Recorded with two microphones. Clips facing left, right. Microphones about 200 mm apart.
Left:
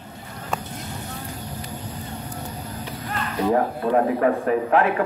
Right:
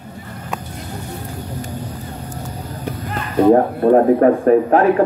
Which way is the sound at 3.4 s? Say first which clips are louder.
Right 9 dB; 50° right (ahead or behind).